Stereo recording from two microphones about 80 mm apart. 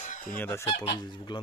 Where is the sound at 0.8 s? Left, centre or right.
Left.